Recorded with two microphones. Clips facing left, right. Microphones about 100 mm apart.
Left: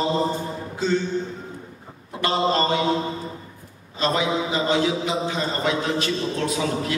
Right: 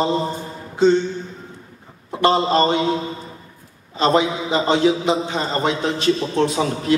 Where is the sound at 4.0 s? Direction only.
25° right (ahead or behind).